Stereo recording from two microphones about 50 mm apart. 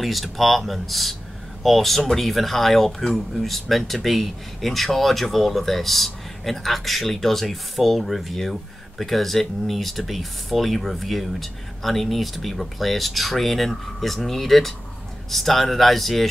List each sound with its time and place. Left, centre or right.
0.0 s speech: centre